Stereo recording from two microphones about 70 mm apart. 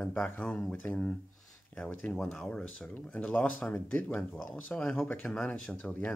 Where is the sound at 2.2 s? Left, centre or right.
Centre.